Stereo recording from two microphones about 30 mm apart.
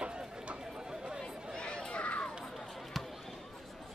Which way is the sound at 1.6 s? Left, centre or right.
Left.